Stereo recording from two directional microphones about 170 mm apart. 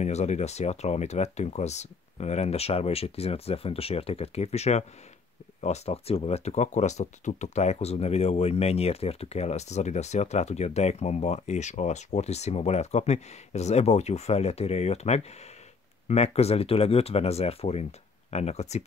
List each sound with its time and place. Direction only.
0.0 s speech: 40° left (ahead or behind)